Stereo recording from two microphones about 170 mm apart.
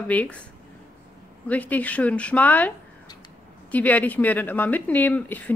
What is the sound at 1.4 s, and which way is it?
Speech, 10° left (ahead or behind).